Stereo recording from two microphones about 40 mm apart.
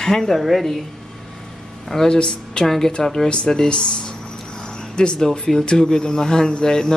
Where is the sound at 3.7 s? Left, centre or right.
Left.